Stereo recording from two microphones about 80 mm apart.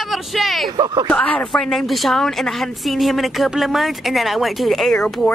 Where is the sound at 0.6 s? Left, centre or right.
Right.